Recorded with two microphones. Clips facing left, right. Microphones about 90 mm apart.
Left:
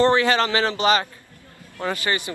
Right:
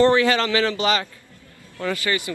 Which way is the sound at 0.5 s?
25° left (ahead or behind).